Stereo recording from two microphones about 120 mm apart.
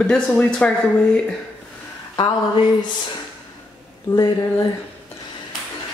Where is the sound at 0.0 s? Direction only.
10° left (ahead or behind).